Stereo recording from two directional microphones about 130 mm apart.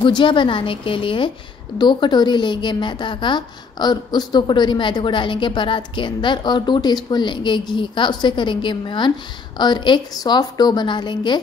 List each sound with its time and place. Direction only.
0.0 s a woman's voice: 40° left (ahead or behind)